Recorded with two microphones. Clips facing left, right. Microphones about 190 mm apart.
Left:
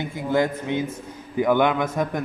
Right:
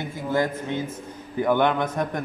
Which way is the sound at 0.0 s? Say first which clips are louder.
Left 2 dB; 15° left (ahead or behind).